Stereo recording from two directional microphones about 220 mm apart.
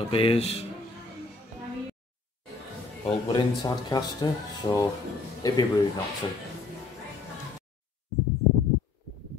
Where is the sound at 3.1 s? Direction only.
20° left (ahead or behind).